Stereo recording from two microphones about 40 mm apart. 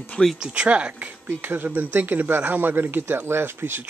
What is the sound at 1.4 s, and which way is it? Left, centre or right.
Speech, right.